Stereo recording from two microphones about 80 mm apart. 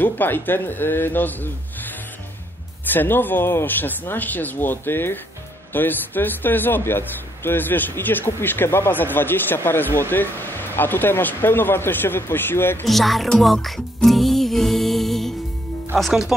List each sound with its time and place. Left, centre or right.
0.0 s a man's voice: left
2.9 s a man's voice: left
12.8 s speech: centre
13.4 s music: centre
16.0 s speech: centre